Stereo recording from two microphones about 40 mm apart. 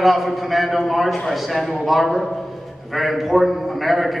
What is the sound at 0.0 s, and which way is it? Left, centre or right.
A man's voice, centre.